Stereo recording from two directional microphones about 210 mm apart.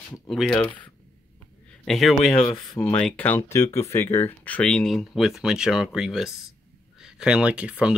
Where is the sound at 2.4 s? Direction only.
15° left (ahead or behind).